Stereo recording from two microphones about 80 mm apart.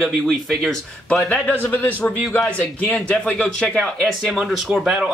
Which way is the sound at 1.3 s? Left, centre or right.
Centre.